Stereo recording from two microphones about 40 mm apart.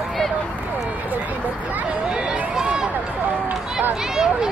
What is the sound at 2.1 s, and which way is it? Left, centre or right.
Run, right.